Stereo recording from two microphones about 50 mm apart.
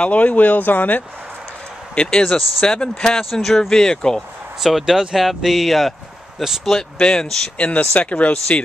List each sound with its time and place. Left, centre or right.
0.0 s speech: left
2.0 s speech: centre
4.6 s speech: centre
6.8 s speech: centre
7.5 s speech: left